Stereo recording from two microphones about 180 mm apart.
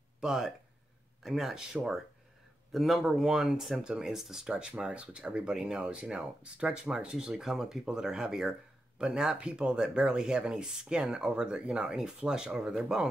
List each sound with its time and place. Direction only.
0.2 s speech: centre (ahead or behind)